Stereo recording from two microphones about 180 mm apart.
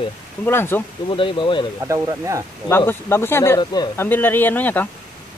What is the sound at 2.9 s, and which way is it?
Speech, 10° left (ahead or behind).